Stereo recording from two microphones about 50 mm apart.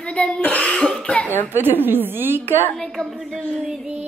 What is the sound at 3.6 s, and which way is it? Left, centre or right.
Music, centre.